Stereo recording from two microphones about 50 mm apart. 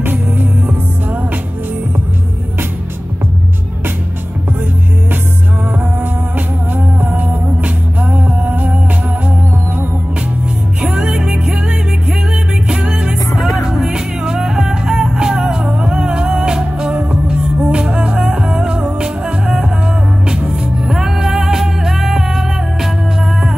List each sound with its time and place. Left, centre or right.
0.7 s music: right
6.3 s music: right
10.8 s music: centre
12.6 s music: centre
20.8 s music: centre